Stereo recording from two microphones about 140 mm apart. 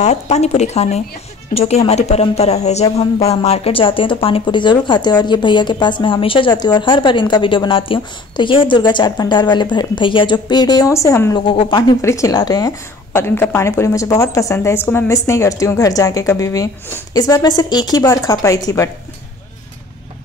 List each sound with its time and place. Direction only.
0.0 s speech: 50° left (ahead or behind); by 11.3 s 20° left (ahead or behind)
11.3 s speech: 35° left (ahead or behind)
12.0 s a woman's voice: 20° left (ahead or behind)